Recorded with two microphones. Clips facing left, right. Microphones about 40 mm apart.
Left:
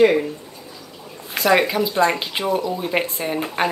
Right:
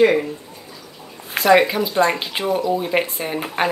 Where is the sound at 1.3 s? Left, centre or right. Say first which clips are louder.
Right 3 dB; centre.